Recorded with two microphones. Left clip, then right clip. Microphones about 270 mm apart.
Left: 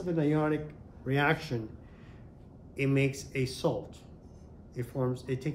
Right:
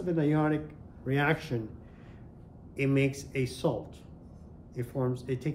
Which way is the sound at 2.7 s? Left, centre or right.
Centre.